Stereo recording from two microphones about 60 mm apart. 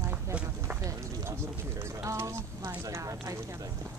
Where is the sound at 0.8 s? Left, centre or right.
Right.